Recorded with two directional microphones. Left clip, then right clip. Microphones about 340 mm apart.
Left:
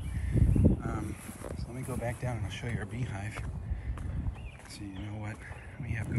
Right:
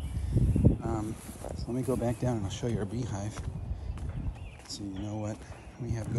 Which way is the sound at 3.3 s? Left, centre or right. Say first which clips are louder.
Even; centre.